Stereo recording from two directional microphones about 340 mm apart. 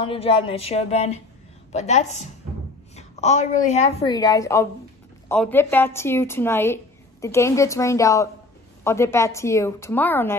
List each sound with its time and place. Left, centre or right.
0.0 s a woman's voice: centre